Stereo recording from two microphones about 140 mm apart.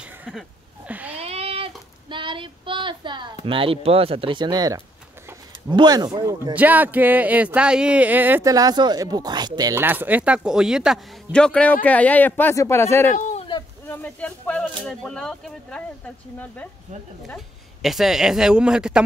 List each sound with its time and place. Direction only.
0.2 s a sound: 5° right (ahead or behind)
1.1 s child singing: 45° right (ahead or behind)
3.4 s speech: 40° right (ahead or behind)
6.5 s speech: 10° right (ahead or behind)
8.5 s speech: 25° right (ahead or behind)
9.8 s speech: 15° right (ahead or behind); by 15.8 s 5° left (ahead or behind)
17.8 s speech: centre (ahead or behind)